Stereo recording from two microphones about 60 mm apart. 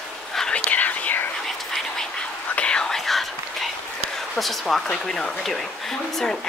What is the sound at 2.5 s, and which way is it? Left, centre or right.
Whispering, centre.